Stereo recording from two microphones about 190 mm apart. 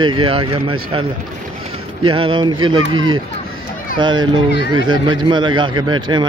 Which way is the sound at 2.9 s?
90° right.